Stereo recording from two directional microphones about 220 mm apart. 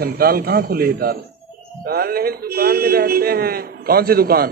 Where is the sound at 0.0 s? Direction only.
45° right (ahead or behind).